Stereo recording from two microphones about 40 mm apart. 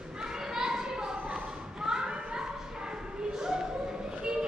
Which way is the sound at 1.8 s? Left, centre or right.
Centre.